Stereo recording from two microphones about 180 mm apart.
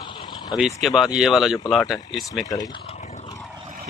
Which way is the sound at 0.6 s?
Centre (ahead or behind).